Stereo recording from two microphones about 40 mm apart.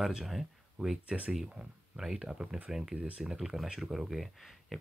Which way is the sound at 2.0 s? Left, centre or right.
Centre.